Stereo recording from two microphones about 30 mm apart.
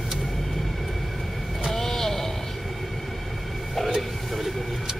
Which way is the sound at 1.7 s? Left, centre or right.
Centre.